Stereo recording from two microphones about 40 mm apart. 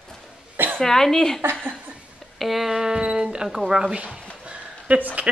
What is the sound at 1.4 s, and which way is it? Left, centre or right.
Speech, right.